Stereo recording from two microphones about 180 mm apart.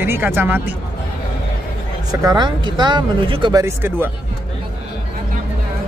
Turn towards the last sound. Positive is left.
turn(degrees=-15)  # may be behind; listen again after turning